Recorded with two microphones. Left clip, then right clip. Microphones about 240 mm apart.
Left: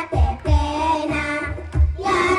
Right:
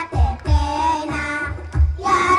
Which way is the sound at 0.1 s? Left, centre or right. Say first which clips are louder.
Left 1 dB; right.